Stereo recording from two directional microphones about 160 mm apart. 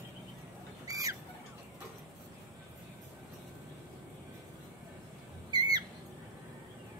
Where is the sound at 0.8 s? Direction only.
20° right (ahead or behind).